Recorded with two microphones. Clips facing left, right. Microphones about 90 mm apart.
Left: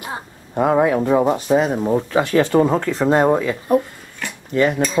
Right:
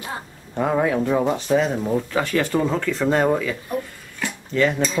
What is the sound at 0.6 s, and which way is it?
Speech, 20° left (ahead or behind).